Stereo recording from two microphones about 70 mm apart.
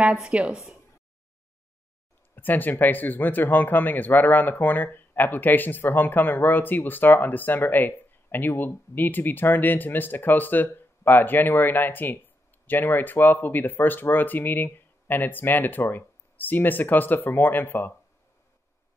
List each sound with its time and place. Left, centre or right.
0.3 s a woman's voice: centre
2.3 s speech: left